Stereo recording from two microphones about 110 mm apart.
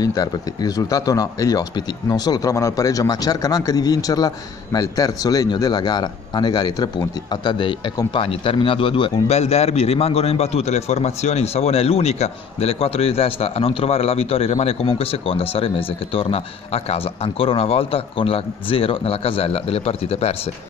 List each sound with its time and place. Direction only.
0.0 s a man's voice: 35° left (ahead or behind)
8.2 s a man's voice: 55° left (ahead or behind)
9.3 s a man's voice: 80° left